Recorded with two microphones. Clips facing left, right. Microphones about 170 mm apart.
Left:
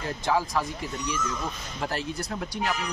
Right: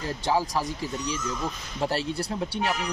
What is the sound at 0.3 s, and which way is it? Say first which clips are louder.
Speech: even; 30° right (ahead or behind).